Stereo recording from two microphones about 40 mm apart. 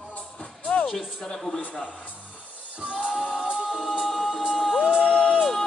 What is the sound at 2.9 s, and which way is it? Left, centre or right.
Music, right.